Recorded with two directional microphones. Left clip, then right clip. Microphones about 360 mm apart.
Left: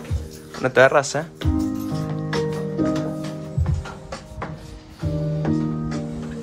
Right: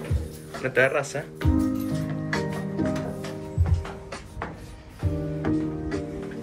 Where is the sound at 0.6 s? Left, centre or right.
Centre.